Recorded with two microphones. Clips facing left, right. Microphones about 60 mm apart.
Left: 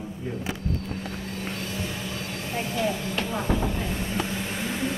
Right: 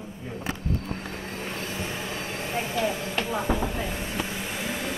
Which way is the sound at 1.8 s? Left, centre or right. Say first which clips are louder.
Even; right.